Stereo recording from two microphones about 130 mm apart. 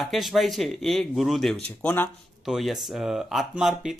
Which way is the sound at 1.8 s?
15° left (ahead or behind).